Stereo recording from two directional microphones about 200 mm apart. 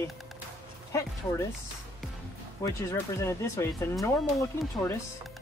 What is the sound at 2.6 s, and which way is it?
Speech, 15° left (ahead or behind).